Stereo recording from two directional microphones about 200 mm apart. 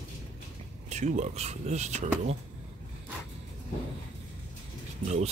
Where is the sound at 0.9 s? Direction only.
35° right (ahead or behind).